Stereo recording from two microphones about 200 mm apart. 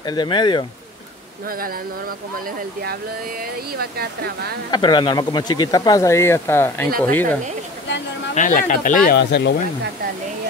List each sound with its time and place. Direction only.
0.0 s speech: 20° left (ahead or behind)
3.7 s speech: 50° right (ahead or behind)
4.6 s speech: 20° left (ahead or behind)
8.4 s speech: 40° left (ahead or behind)
9.1 s speech: 55° left (ahead or behind)